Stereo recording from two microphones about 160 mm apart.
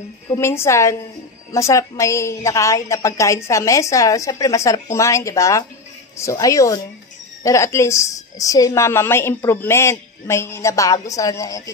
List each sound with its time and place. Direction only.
0.3 s a woman's voice: 15° left (ahead or behind)